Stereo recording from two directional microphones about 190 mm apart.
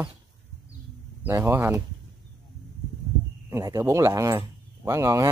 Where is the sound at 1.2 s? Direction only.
10° right (ahead or behind).